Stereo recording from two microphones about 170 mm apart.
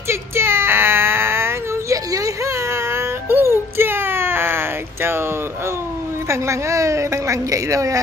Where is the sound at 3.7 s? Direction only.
15° right (ahead or behind).